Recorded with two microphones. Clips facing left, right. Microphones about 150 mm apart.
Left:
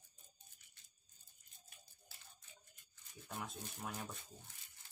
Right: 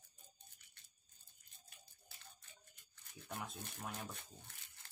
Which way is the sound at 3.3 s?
Centre (ahead or behind).